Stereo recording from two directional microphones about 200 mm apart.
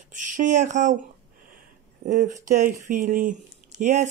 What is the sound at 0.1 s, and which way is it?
Speech, 40° right (ahead or behind).